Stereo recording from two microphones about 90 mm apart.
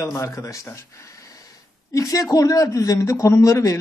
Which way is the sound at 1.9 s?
40° left (ahead or behind).